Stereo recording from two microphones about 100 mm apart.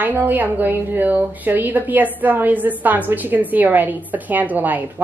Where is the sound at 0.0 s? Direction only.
20° right (ahead or behind).